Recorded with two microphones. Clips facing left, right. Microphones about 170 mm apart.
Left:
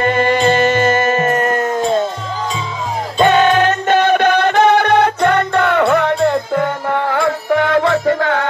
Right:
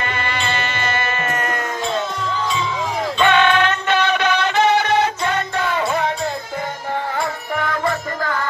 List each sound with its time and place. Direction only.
0.0 s music: 45° left (ahead or behind)
3.2 s music: 40° left (ahead or behind); by 8.5 s 75° left (ahead or behind)